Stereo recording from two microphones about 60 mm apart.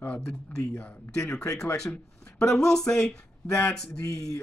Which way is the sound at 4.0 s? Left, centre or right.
Left.